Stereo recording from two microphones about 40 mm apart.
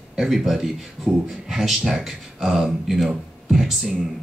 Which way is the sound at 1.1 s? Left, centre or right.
Centre.